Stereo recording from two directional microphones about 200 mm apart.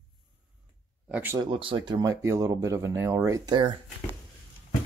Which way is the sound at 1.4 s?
25° right (ahead or behind).